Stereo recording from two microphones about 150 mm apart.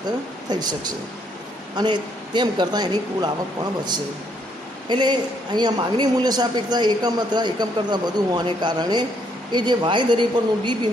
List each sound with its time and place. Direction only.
0.5 s a woman's voice: 25° right (ahead or behind)
4.8 s a woman's voice: 30° right (ahead or behind)